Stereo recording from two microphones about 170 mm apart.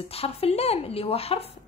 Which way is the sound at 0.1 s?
35° left (ahead or behind).